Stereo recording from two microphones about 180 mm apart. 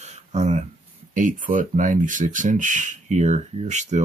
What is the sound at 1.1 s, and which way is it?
Speech, 45° right (ahead or behind).